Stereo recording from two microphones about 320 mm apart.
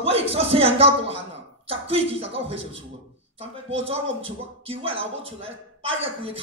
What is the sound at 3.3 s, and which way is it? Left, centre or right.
Speech, centre.